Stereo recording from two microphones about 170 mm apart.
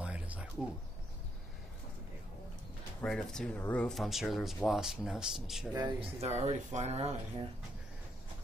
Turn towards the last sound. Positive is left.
turn(degrees=-40)  # may be behind; listen again after turning